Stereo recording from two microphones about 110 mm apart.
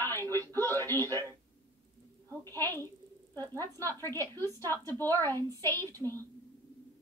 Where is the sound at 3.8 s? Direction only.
25° left (ahead or behind).